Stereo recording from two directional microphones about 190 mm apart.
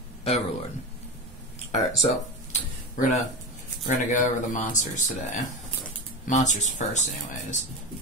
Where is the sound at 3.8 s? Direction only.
45° left (ahead or behind).